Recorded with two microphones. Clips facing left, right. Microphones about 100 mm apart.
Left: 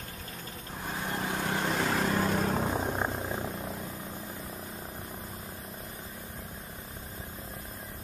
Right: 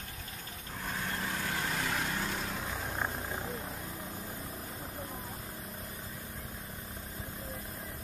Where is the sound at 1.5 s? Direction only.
35° left (ahead or behind).